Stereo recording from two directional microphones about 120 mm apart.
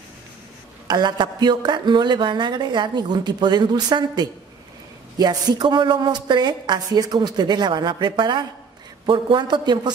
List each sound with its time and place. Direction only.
0.8 s speech: 35° right (ahead or behind)